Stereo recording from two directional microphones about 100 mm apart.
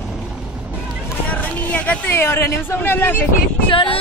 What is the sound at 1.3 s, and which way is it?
Speech, 15° left (ahead or behind).